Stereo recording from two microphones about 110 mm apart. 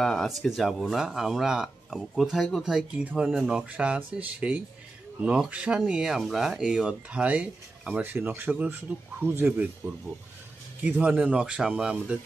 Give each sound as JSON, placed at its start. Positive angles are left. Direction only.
{"t": 0.0, "sound": "speech", "side_deg": 5}
{"t": 10.8, "sound": "speech", "side_deg": -15}